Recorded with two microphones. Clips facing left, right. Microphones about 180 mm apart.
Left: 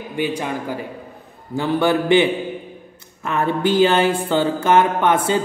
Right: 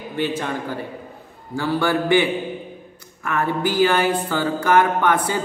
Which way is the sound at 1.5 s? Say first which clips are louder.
Left 3 dB; 20° left (ahead or behind).